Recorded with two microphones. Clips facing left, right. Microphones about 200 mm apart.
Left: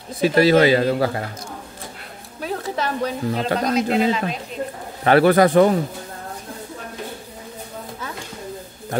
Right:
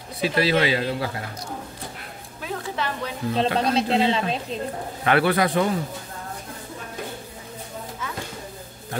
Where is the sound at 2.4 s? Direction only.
40° left (ahead or behind).